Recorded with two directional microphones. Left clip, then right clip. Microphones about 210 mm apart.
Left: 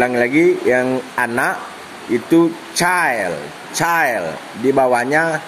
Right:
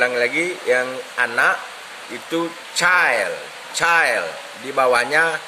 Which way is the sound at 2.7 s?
15° left (ahead or behind).